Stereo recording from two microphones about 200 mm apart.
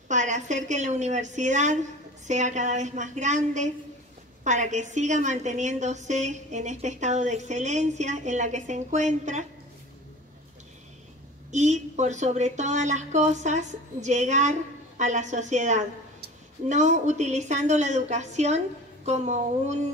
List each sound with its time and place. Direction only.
0.1 s a woman's voice: 35° right (ahead or behind)
11.5 s a woman's voice: 35° right (ahead or behind)